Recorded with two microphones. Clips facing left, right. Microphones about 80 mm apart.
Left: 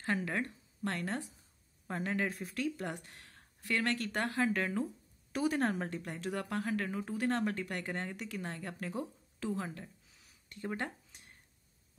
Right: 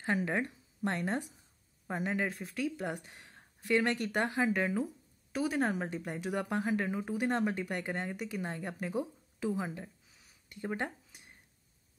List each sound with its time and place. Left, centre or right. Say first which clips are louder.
0.0 s a woman's voice: right 3 dB; centre
5.9 s speech: right 2 dB; centre
10.5 s a sound: right 2 dB; centre